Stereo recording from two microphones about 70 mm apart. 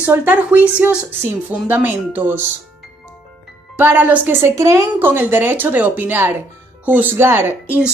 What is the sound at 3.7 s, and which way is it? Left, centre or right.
Speech, right.